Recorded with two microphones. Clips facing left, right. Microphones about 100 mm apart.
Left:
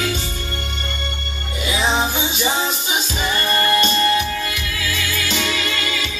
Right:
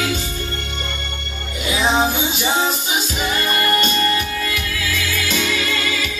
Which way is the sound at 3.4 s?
35° left (ahead or behind).